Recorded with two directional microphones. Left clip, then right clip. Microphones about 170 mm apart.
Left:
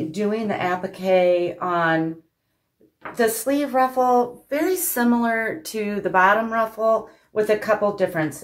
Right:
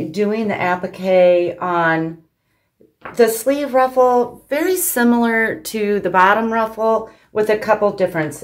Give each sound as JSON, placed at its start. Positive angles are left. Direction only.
{"t": 0.1, "sound": "speech", "side_deg": -35}
{"t": 3.1, "sound": "a woman's voice", "side_deg": -40}